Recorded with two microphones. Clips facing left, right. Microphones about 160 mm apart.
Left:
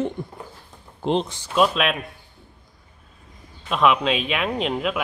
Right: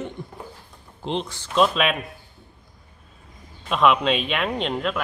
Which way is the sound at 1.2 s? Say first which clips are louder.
Even; 15° left (ahead or behind).